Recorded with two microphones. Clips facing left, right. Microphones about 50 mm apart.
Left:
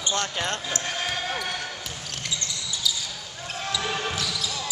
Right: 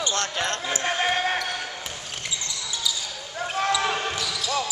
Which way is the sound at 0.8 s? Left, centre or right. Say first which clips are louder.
Right 6 dB; right.